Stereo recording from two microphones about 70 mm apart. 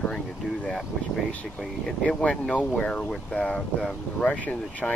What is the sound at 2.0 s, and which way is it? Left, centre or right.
Speech, centre.